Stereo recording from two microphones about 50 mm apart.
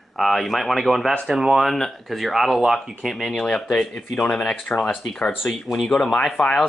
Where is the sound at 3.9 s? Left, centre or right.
Centre.